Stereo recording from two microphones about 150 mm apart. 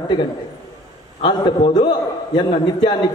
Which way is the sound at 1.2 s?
30° left (ahead or behind).